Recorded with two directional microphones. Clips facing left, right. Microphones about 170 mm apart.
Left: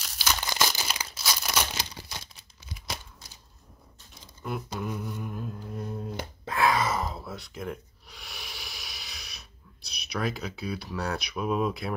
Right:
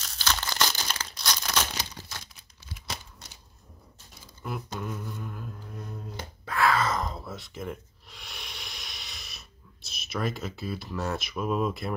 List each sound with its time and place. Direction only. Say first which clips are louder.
0.0 s crumpling: even; 10° left (ahead or behind)
4.5 s a sound: left 2 dB; centre (ahead or behind)
6.4 s gasp: even; 20° left (ahead or behind); by 11.9 s centre (ahead or behind)